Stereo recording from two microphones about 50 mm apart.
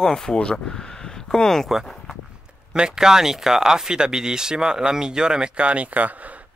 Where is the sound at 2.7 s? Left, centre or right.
Centre.